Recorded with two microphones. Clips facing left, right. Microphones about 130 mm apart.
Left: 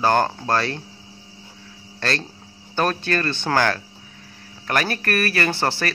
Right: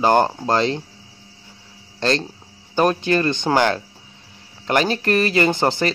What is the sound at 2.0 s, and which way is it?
Speech, 20° right (ahead or behind).